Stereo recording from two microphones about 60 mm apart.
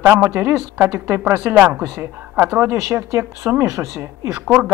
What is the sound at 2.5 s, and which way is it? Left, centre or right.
Speech, right.